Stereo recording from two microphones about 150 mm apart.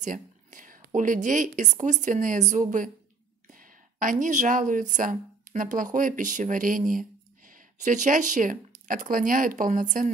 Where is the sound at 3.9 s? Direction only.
60° right (ahead or behind).